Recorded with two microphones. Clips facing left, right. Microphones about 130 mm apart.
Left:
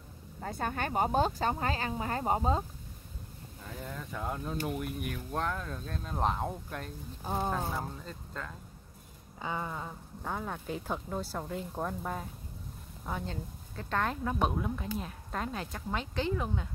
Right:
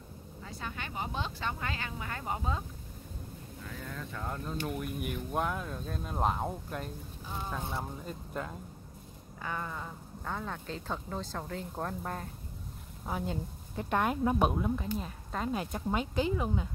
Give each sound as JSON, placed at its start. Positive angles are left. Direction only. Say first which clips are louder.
{"t": 0.4, "sound": "speech", "louder": "left 8 dB", "side_deg": 50}
{"t": 3.8, "sound": "speech", "louder": "left 3 dB", "side_deg": 15}
{"t": 5.1, "sound": "speech", "louder": "right 3 dB", "side_deg": -10}
{"t": 7.2, "sound": "speech", "louder": "left 8 dB", "side_deg": 50}
{"t": 8.0, "sound": "speech", "louder": "right 4 dB", "side_deg": -15}
{"t": 9.4, "sound": "speech", "louder": "left 2 dB", "side_deg": 15}
{"t": 13.0, "sound": "speech", "louder": "right 2 dB", "side_deg": -10}
{"t": 14.5, "sound": "speech", "louder": "right 2 dB", "side_deg": 0}
{"t": 15.5, "sound": "speech", "louder": "right 4 dB", "side_deg": -15}